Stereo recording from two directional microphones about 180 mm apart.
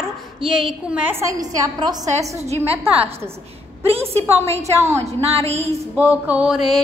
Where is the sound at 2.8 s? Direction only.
30° right (ahead or behind).